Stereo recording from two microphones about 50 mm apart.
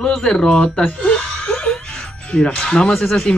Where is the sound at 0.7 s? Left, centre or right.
Left.